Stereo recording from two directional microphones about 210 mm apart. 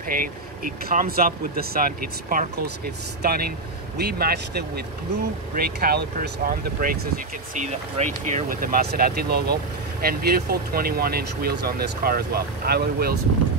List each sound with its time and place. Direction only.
0.1 s speech: 40° right (ahead or behind)